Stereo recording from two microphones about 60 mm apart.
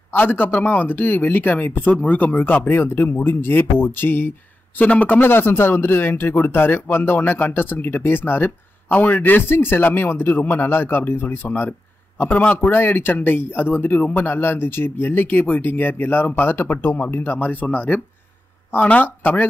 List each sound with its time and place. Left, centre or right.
0.1 s a man's voice: left
4.7 s a man's voice: left